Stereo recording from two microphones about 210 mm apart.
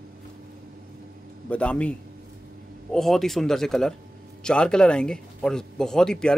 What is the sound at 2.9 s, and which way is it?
Speech, centre (ahead or behind).